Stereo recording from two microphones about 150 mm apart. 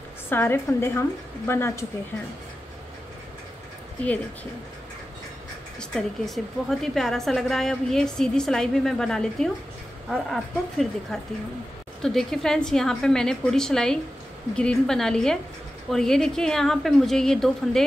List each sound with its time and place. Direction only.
0.3 s a woman's voice: 15° left (ahead or behind)
5.8 s a woman's voice: 5° left (ahead or behind)